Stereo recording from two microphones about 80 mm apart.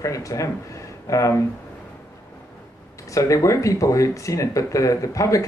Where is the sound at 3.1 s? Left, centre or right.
Left.